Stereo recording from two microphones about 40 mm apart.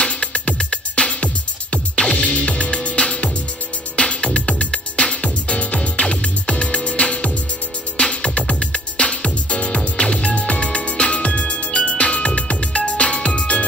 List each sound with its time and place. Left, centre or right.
0.0 s music: left